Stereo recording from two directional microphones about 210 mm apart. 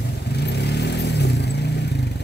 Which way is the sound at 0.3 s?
50° left (ahead or behind).